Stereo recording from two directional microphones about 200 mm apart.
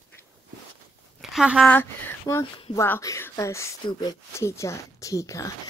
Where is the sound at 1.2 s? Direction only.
5° right (ahead or behind).